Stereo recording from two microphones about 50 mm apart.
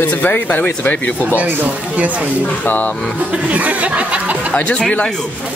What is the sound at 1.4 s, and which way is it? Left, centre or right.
Speech, right.